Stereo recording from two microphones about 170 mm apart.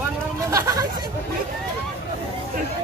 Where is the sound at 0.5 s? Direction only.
20° right (ahead or behind).